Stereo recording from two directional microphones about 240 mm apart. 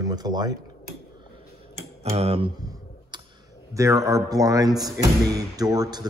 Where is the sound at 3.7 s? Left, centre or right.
Centre.